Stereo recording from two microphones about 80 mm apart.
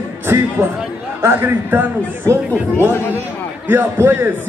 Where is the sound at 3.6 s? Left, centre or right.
Right.